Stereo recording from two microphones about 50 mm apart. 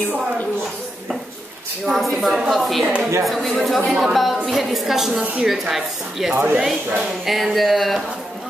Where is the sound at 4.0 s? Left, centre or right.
Centre.